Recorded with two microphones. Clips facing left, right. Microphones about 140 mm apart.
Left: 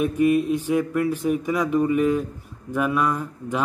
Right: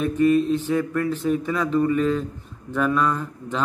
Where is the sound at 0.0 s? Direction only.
10° left (ahead or behind).